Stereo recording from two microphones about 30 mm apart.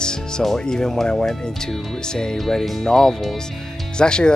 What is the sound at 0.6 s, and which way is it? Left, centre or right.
Speech, left.